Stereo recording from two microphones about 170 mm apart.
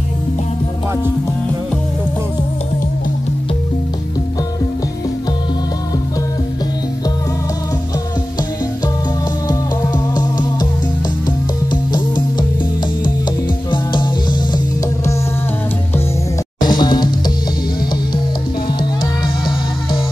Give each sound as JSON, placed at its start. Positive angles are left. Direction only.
{"t": 9.5, "sound": "music", "side_deg": 25}
{"t": 16.6, "sound": "music", "side_deg": 25}